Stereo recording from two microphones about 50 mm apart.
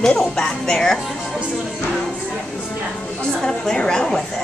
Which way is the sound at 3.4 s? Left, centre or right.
Centre.